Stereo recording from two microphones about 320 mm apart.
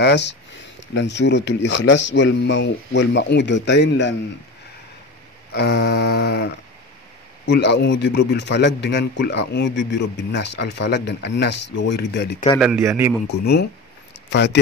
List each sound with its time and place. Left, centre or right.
0.0 s a man's voice: left
5.5 s a man's voice: left
12.5 s a man's voice: centre
13.3 s a man's voice: left